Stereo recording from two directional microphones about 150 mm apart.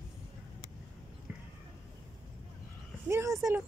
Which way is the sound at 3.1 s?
20° right (ahead or behind).